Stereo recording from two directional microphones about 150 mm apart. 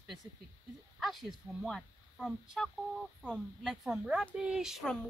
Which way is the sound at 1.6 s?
Centre (ahead or behind).